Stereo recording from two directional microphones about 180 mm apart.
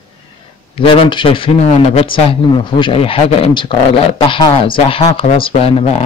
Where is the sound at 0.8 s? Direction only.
30° left (ahead or behind).